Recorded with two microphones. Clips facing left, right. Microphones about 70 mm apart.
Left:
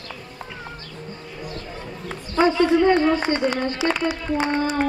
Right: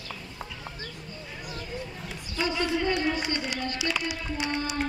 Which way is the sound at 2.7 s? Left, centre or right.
Left.